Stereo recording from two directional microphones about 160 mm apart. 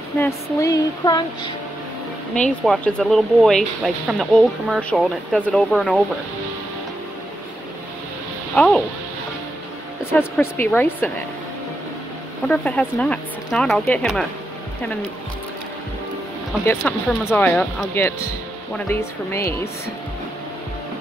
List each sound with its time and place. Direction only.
0.2 s a sound: 20° left (ahead or behind)
2.6 s speech: centre (ahead or behind)
8.5 s speech: 5° left (ahead or behind)
10.1 s speech: 15° left (ahead or behind)
12.4 s speech: 10° left (ahead or behind)
16.8 s speech: 15° left (ahead or behind)